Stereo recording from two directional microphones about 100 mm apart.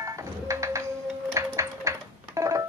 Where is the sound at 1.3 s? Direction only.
30° right (ahead or behind).